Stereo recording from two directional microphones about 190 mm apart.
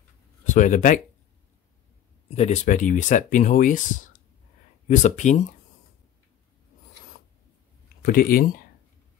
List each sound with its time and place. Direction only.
0.6 s speech: 40° left (ahead or behind)
2.3 s speech: 35° left (ahead or behind)
8.0 s speech: 50° left (ahead or behind)